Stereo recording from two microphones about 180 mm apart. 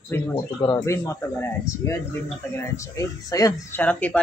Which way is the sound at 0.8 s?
15° left (ahead or behind).